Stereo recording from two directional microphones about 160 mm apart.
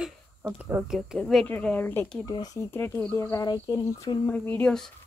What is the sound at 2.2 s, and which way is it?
Speech, 25° left (ahead or behind).